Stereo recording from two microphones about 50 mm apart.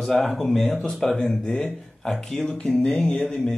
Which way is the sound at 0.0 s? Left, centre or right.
Centre.